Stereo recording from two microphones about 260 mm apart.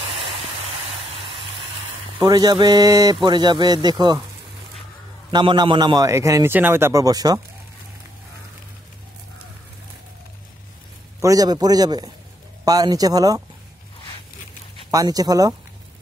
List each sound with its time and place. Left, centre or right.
1.2 s a sound: centre
2.1 s a man's voice: centre
5.3 s a man's voice: centre
11.1 s a man's voice: centre
14.9 s a man's voice: centre